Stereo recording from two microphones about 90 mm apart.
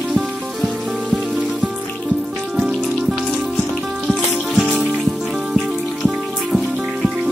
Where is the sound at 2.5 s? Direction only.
10° right (ahead or behind).